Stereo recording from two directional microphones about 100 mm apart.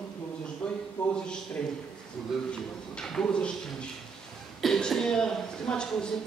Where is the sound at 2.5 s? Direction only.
5° left (ahead or behind).